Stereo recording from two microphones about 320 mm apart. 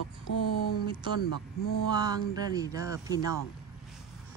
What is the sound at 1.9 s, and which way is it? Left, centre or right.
Speech, centre.